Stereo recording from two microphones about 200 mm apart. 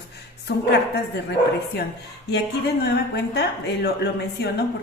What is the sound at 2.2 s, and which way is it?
A woman's voice, 55° left (ahead or behind).